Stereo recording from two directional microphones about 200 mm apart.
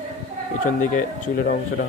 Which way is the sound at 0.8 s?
45° left (ahead or behind).